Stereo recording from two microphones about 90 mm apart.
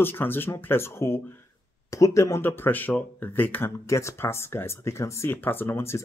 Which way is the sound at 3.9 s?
35° left (ahead or behind).